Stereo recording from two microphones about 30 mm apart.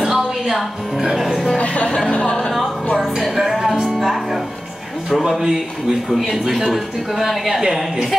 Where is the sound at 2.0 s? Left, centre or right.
Left.